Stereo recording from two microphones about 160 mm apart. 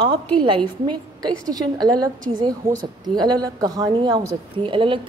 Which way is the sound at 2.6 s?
60° right (ahead or behind).